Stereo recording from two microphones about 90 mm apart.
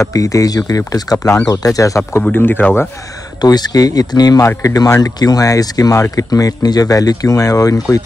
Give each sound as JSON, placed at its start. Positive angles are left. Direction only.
{"t": 0.0, "sound": "speech", "side_deg": 40}
{"t": 2.3, "sound": "speech", "side_deg": 20}
{"t": 3.3, "sound": "speech", "side_deg": 50}